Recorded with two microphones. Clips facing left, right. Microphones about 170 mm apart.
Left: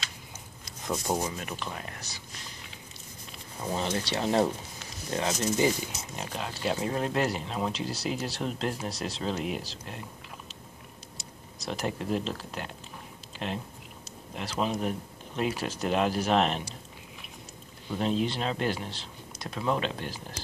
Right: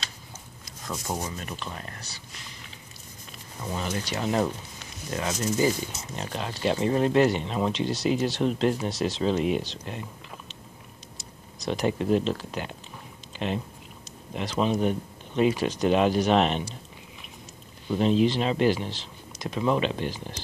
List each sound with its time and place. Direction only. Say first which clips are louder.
0.8 s speech: left 3 dB; 10° left (ahead or behind)
3.6 s speech: left 1 dB; 25° left (ahead or behind)
6.1 s speech: right 3 dB; 5° left (ahead or behind)
11.6 s speech: right 6 dB; centre (ahead or behind)
13.3 s a sound: right 5 dB; centre (ahead or behind)
14.0 s speech: right 5 dB; centre (ahead or behind)
17.9 s speech: right 6 dB; centre (ahead or behind)